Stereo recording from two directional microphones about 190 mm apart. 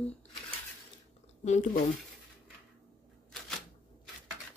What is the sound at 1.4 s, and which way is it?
Speech, 40° left (ahead or behind).